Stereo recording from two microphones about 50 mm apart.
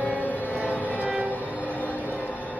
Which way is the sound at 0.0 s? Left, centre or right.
Left.